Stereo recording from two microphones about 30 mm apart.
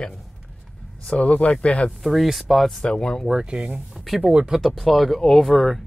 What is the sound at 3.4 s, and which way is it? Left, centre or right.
Speech, right.